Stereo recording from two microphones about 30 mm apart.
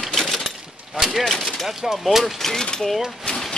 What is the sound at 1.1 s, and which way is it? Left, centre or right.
Speech, centre.